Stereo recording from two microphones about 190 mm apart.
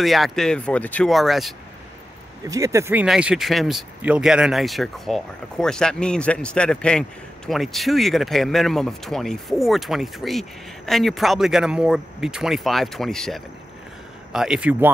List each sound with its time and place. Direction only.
0.0 s speech: centre (ahead or behind)
2.4 s speech: 15° right (ahead or behind)